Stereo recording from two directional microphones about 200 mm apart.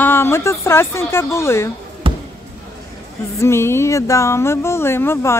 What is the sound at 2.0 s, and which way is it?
Basketball bounce, 25° right (ahead or behind).